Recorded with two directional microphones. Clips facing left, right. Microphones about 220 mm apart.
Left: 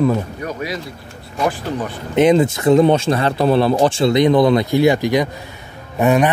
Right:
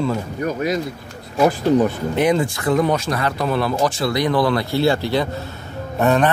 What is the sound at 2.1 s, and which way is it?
A man's voice, 20° left (ahead or behind).